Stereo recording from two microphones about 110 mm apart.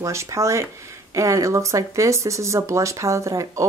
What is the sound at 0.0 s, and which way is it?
Speech, 25° right (ahead or behind).